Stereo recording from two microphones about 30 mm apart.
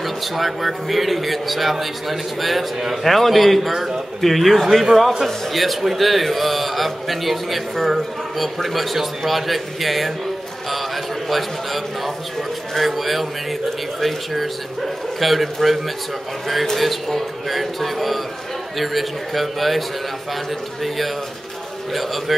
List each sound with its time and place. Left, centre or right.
0.0 s speech: centre
3.7 s speech: centre
4.2 s speech: centre
11.2 s speech: centre